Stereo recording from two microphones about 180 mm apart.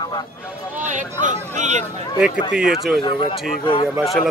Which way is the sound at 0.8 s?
45° right (ahead or behind).